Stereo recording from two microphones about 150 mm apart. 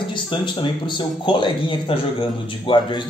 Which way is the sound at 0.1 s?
30° left (ahead or behind).